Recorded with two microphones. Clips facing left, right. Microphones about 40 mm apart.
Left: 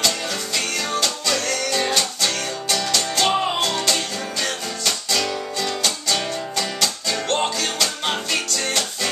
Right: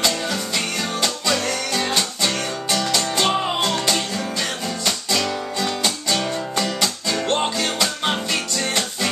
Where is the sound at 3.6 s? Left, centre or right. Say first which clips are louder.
Right 1 dB; centre.